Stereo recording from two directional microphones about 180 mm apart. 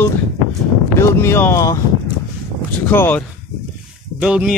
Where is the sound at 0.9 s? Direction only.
15° left (ahead or behind).